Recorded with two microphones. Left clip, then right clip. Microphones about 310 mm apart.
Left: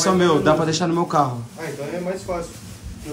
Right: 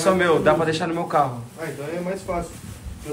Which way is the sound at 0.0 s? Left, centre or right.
Centre.